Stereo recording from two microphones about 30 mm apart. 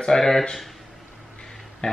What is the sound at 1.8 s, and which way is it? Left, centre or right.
Speech, left.